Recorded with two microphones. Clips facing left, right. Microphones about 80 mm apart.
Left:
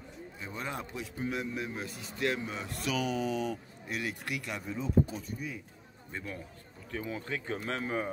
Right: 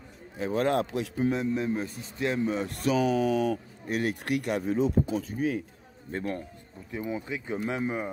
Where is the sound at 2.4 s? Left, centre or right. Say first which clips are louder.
Right 9 dB; right.